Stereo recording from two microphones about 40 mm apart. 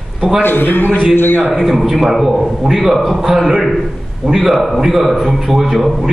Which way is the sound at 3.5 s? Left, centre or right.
Centre.